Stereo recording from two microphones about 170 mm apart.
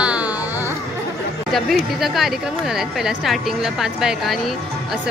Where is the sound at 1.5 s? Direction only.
Centre (ahead or behind).